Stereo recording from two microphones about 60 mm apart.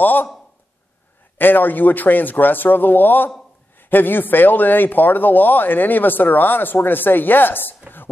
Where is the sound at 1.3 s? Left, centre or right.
Left.